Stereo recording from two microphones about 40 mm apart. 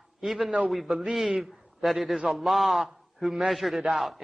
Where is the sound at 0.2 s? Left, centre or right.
Centre.